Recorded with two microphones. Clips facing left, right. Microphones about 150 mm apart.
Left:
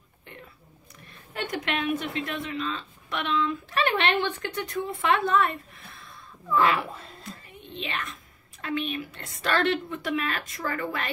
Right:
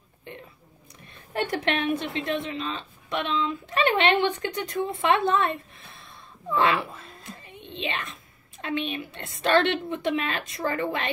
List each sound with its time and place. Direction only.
1.5 s a woman's voice: 30° right (ahead or behind)
7.2 s whispering: 20° right (ahead or behind)
8.5 s a woman's voice: 20° right (ahead or behind)